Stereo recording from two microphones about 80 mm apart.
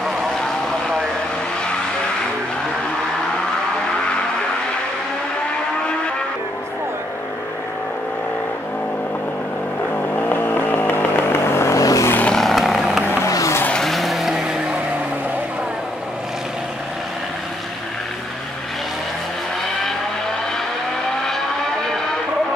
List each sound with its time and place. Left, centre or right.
0.0 s vehicle: centre
10.1 s vehicle: left
12.3 s vehicle: centre
13.2 s vehicle: left
13.7 s vehicle: centre